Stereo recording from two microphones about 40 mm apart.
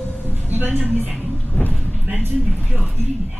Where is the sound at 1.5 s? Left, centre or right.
Left.